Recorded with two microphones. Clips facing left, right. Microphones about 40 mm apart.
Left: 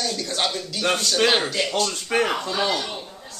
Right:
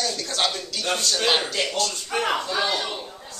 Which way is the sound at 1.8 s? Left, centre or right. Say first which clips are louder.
Left 4 dB; left.